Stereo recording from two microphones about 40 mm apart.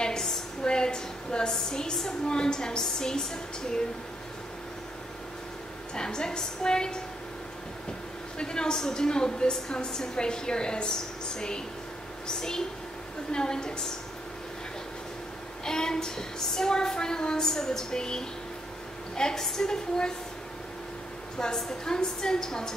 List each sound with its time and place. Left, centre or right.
0.0 s a sound: centre
0.7 s a woman's voice: centre
5.9 s a woman's voice: centre
8.4 s a woman's voice: centre
15.6 s a woman's voice: centre
21.4 s a woman's voice: centre